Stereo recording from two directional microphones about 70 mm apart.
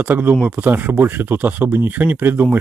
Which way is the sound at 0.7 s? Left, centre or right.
Right.